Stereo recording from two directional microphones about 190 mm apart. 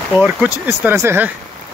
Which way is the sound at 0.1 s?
5° right (ahead or behind).